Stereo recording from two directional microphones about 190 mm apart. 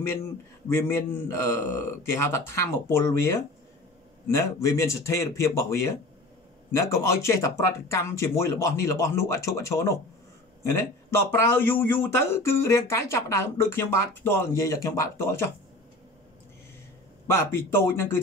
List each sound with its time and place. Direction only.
0.7 s a man's voice: 10° left (ahead or behind)
4.3 s a man's voice: 15° left (ahead or behind)
17.3 s a man's voice: 10° left (ahead or behind)